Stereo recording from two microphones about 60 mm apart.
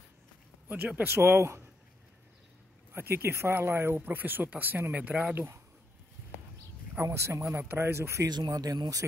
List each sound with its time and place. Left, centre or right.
0.7 s speech: right
1.1 s speech: right
2.9 s speech: right
5.3 s speech: right
7.0 s speech: right
8.5 s speech: right